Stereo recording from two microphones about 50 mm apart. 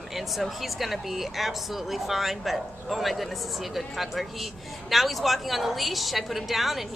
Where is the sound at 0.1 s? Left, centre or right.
Centre.